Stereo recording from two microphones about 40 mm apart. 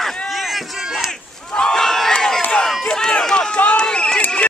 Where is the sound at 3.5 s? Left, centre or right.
Left.